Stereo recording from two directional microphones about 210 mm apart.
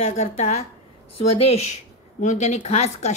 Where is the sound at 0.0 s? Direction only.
30° left (ahead or behind).